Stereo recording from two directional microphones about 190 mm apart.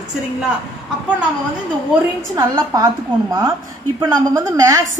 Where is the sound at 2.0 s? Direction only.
20° right (ahead or behind).